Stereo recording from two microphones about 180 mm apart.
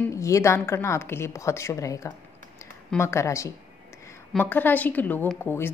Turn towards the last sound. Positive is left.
turn(degrees=10)  # may be behind; listen again after turning